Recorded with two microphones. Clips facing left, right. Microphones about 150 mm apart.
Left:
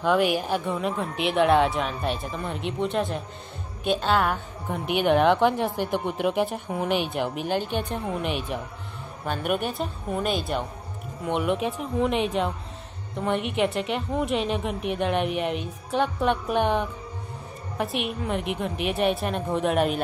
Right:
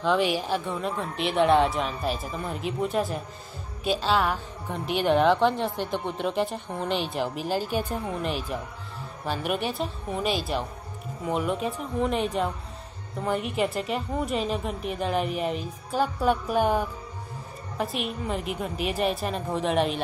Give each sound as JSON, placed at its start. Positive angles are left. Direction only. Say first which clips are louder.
{"t": 0.0, "sound": "a woman's voice", "louder": "left 2 dB", "side_deg": 5}